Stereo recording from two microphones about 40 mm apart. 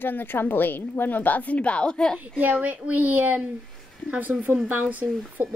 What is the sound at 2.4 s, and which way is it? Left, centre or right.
Speech, right.